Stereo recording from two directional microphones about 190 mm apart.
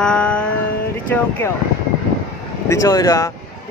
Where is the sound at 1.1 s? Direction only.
10° left (ahead or behind).